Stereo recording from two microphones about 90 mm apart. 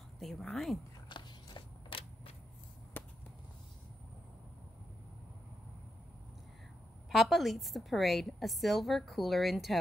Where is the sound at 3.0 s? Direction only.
20° left (ahead or behind).